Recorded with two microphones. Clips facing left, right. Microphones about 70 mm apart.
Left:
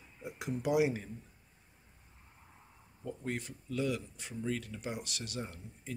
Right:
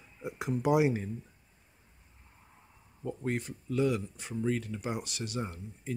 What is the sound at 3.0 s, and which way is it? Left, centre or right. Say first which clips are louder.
Speech: right 5 dB; right.